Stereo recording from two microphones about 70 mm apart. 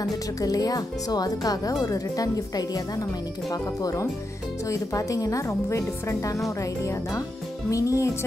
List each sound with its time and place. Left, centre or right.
0.4 s a woman's voice: left